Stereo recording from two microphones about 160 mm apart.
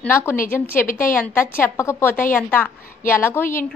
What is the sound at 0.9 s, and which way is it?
Speech, 60° left (ahead or behind).